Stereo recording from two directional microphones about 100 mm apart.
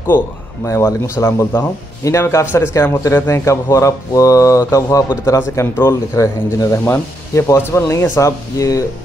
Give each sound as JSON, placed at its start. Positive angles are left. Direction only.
{"t": 0.7, "sound": "a man's voice", "side_deg": 30}